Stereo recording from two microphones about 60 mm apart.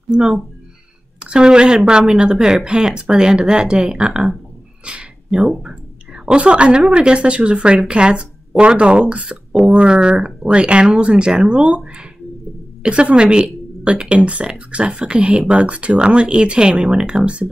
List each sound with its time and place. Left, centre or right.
0.1 s speech: centre